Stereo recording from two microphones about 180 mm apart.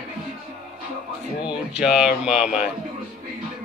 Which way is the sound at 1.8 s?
5° right (ahead or behind).